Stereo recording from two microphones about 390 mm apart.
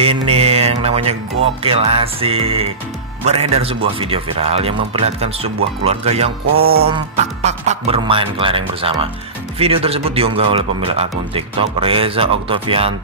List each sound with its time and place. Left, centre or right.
0.0 s mantra: centre
1.6 s speech: centre
6.5 s music: right
7.4 s speech: centre